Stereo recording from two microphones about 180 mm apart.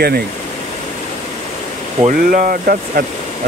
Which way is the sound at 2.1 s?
50° right (ahead or behind).